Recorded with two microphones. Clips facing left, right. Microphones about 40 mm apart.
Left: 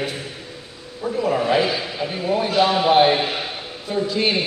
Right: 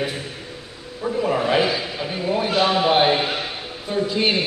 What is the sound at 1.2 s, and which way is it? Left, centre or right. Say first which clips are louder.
A man's voice: left 1 dB; centre.